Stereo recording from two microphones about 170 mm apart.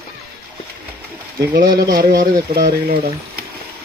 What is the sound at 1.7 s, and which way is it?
Speech, 20° right (ahead or behind).